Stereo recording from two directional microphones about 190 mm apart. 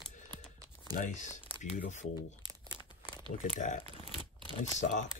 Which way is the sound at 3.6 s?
40° left (ahead or behind).